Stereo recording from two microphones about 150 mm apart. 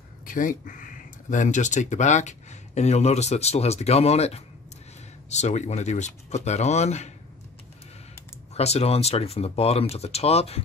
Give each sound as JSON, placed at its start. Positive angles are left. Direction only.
{"t": 0.2, "sound": "speech", "side_deg": 65}
{"t": 8.5, "sound": "speech", "side_deg": 45}